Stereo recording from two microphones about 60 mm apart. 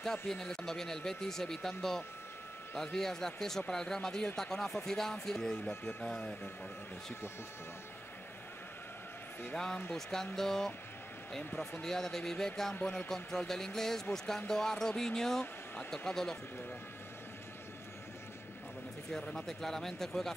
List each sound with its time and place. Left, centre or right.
0.0 s speech: centre
5.7 s speech: left
9.9 s speech: centre
19.1 s speech: centre